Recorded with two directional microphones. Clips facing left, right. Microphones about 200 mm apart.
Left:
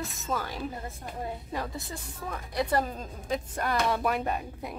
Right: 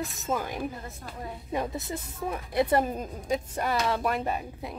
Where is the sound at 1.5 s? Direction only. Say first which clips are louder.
Right 4 dB; 20° right (ahead or behind).